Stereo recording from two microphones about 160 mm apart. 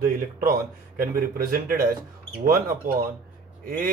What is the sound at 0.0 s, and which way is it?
Speech, 65° right (ahead or behind).